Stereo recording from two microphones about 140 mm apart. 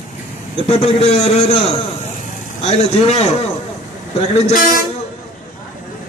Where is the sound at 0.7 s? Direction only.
45° left (ahead or behind).